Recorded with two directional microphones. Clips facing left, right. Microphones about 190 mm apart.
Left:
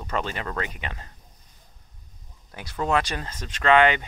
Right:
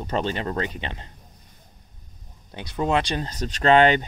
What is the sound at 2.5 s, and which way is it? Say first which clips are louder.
Speech: right 2 dB; 20° right (ahead or behind).